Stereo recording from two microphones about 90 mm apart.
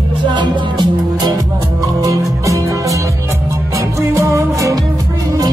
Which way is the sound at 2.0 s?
40° right (ahead or behind).